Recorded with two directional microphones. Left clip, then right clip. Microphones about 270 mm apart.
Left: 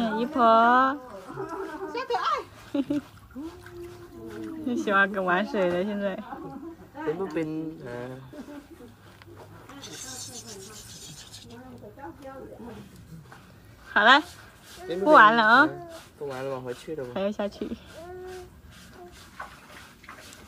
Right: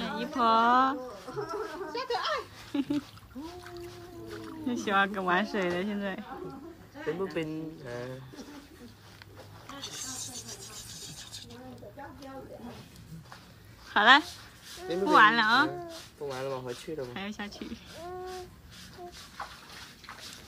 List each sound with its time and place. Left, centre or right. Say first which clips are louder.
0.0 s speech: left 6 dB; centre
1.9 s a sound: left 5 dB; centre
2.7 s speech: left 4 dB; centre
4.6 s speech: left 4 dB; centre
9.8 s rub: even; centre
13.9 s speech: left 2 dB; centre